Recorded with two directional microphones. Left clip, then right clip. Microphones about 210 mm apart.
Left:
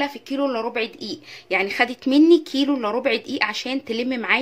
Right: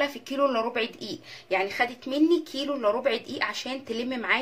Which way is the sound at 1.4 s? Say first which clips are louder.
Left 5 dB; 35° left (ahead or behind).